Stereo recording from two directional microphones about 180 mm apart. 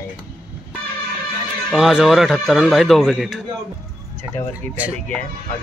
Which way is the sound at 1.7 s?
Centre (ahead or behind).